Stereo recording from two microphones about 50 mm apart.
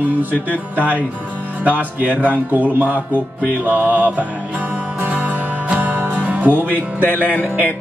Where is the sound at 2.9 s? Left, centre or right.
Right.